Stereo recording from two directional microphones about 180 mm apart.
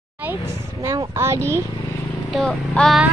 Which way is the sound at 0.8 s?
15° right (ahead or behind).